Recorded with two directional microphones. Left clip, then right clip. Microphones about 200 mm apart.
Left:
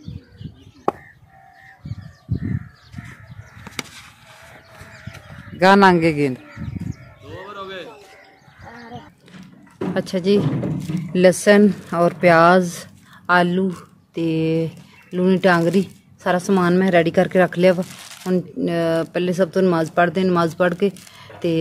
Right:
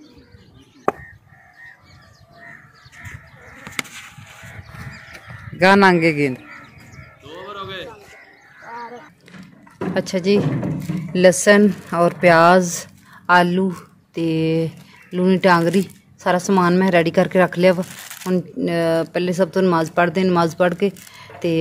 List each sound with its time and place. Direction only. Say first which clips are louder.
5.1 s fowl: right 2 dB; 5° left (ahead or behind)
7.2 s a sound: right 1 dB; 20° right (ahead or behind)
9.9 s speech: right 1 dB; centre (ahead or behind)